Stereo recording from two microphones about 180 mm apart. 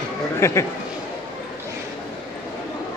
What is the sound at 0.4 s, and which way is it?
Speech, 15° left (ahead or behind).